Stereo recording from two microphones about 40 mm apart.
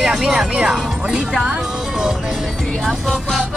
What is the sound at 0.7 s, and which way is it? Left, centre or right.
Speech, centre.